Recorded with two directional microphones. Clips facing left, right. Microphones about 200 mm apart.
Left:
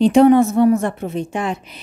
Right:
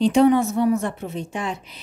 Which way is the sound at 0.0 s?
55° left (ahead or behind).